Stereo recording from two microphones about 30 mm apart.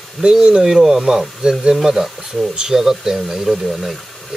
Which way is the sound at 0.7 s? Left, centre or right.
Centre.